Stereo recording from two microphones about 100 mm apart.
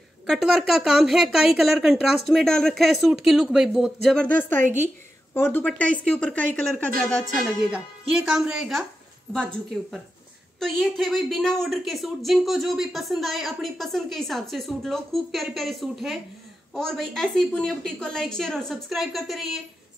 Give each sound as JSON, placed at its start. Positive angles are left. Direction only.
{"t": 0.3, "sound": "a woman's voice", "side_deg": -5}
{"t": 4.3, "sound": "a woman's voice", "side_deg": 20}
{"t": 7.4, "sound": "a woman's voice", "side_deg": -10}